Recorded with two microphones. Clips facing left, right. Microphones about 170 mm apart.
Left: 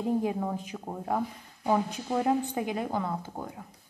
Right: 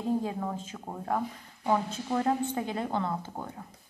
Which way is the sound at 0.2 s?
15° left (ahead or behind).